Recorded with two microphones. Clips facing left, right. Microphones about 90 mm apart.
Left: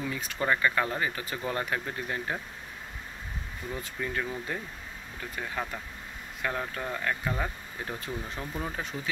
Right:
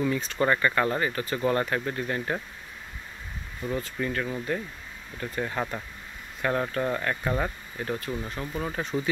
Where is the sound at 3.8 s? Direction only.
10° left (ahead or behind).